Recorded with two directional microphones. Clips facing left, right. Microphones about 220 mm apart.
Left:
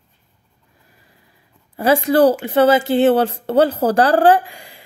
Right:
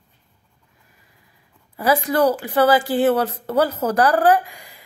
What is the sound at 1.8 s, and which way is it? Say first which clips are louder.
Speech: left 5 dB; 30° left (ahead or behind).